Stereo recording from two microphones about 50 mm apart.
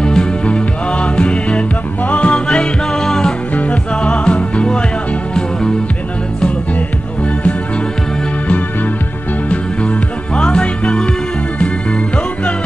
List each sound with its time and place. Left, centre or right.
0.0 s music: centre
3.5 s music: left
9.5 s music: left